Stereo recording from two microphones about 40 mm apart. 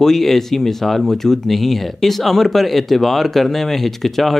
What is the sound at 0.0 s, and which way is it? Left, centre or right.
Speech, centre.